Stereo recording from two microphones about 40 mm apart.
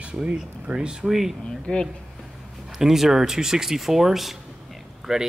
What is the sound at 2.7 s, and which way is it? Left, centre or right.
Speech, centre.